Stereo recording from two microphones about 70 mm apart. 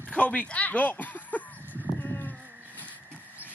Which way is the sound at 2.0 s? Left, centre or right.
Left.